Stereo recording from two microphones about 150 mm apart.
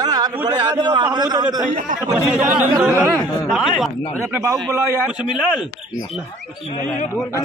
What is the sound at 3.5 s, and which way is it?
Speech, centre (ahead or behind).